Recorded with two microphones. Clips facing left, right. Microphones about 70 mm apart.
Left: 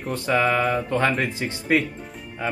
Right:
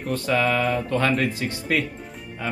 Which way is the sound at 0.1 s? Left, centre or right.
Left.